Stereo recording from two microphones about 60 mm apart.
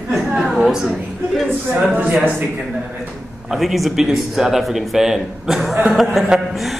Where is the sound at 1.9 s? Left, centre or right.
Right.